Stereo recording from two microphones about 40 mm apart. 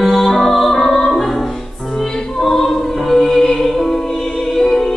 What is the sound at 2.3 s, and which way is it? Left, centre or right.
Music, centre.